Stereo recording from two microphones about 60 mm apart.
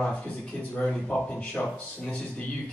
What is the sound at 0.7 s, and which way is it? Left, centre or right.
Speech, centre.